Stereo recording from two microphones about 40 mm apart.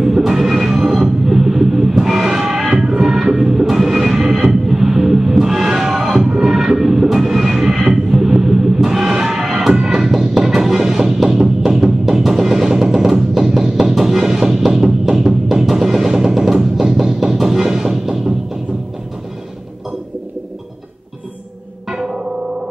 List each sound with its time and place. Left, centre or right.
0.0 s music: centre
2.9 s train: centre
11.4 s music: centre
21.9 s music: centre